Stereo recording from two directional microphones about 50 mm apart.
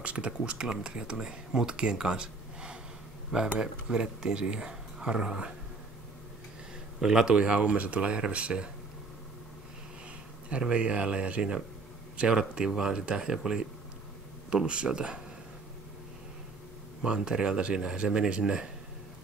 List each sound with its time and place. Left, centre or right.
0.0 s speech: right
7.0 s speech: centre
7.2 s speech: centre
10.6 s speech: right
14.5 s speech: centre
17.0 s speech: centre